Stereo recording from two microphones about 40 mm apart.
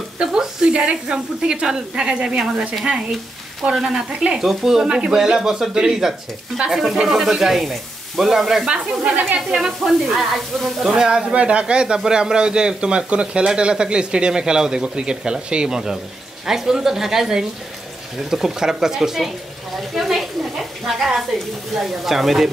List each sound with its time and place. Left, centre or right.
0.2 s speech: centre
3.7 s speech: centre
4.8 s speech: centre
8.6 s speech: right
9.4 s speech: centre
10.0 s speech: centre
10.9 s speech: right; by 22.5 s centre